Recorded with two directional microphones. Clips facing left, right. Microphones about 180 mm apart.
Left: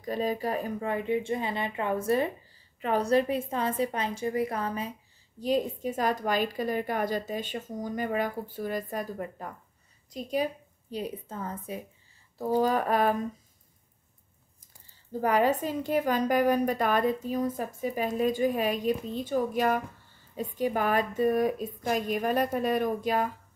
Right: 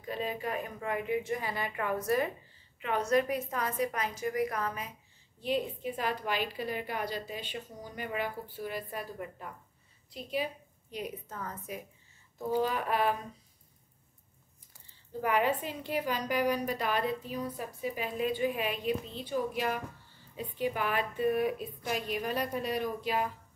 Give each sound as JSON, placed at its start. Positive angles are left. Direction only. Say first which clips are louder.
{"t": 0.0, "sound": "speech", "louder": "left 6 dB", "side_deg": 40}
{"t": 5.4, "sound": "a woman's voice", "louder": "left 5 dB", "side_deg": 40}
{"t": 15.1, "sound": "a woman's voice", "louder": "left 4 dB", "side_deg": 40}